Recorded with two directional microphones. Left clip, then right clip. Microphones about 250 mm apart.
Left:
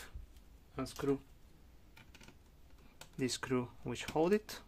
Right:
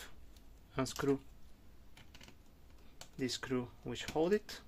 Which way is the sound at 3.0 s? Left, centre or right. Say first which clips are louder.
Left 1 dB; centre.